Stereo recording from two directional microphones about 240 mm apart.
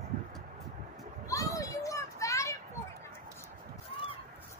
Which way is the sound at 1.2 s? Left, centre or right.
Centre.